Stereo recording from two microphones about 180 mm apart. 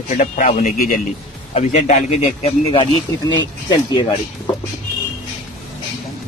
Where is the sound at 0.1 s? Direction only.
45° left (ahead or behind).